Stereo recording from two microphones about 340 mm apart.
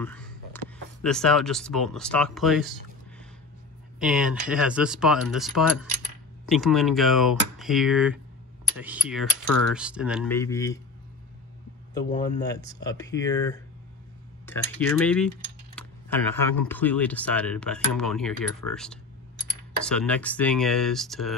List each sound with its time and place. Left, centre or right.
0.0 s a sound: centre
1.0 s speech: centre
4.0 s speech: centre
6.5 s speech: centre
11.9 s speech: left
12.4 s speech: centre